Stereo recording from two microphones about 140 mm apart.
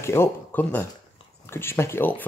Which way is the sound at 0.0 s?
20° left (ahead or behind).